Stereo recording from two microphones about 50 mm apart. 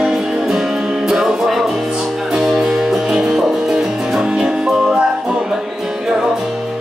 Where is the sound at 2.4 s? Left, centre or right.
Centre.